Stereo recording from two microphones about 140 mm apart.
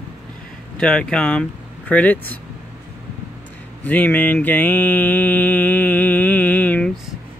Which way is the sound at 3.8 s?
10° left (ahead or behind).